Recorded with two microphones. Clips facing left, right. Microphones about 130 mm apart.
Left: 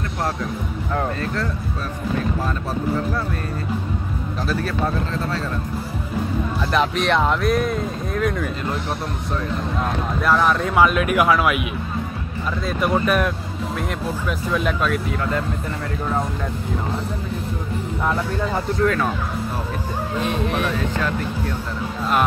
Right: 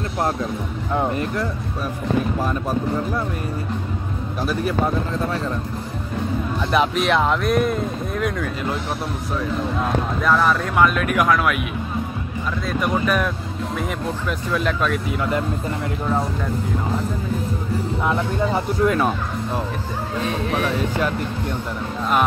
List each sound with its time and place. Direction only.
0.9 s speech: 15° right (ahead or behind)
4.4 s speech: 15° right (ahead or behind)
6.7 s speech: 5° right (ahead or behind)
12.6 s speech: centre (ahead or behind)
18.1 s speech: 15° right (ahead or behind)
20.5 s speech: 10° right (ahead or behind)